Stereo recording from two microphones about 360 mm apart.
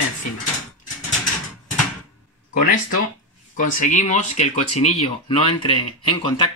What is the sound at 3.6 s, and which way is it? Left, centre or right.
Speech, left.